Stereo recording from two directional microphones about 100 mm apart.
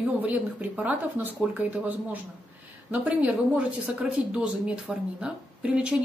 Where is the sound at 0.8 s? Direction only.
15° right (ahead or behind).